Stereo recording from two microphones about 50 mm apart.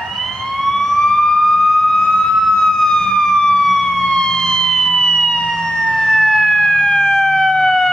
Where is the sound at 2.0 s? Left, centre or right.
Centre.